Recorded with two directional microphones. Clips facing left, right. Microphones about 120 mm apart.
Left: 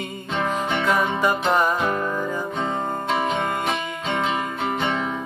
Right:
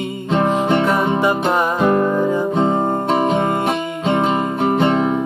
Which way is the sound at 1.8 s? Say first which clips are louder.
Right 9 dB; 35° right (ahead or behind).